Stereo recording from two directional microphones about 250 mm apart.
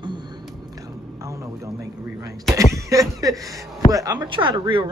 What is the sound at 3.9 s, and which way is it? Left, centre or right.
Speech, centre.